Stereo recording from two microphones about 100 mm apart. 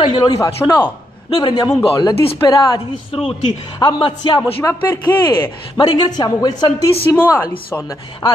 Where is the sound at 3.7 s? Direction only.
55° left (ahead or behind).